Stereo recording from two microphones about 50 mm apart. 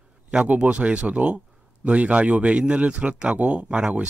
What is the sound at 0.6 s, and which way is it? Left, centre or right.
Speech, right.